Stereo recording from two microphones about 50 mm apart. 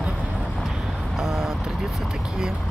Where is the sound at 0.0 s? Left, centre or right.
Centre.